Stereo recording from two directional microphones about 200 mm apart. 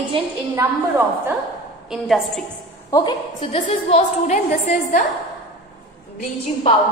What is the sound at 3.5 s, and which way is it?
A woman's voice, 35° left (ahead or behind).